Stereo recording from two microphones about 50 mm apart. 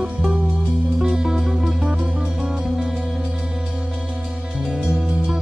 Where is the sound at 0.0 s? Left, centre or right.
Centre.